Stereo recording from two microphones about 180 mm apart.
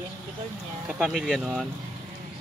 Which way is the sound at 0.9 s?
5° right (ahead or behind).